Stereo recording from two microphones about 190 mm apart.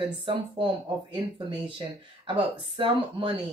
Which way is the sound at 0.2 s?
30° right (ahead or behind).